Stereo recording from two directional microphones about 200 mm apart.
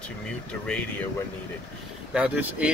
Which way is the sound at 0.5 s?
5° left (ahead or behind).